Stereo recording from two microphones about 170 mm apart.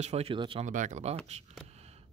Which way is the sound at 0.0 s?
40° right (ahead or behind).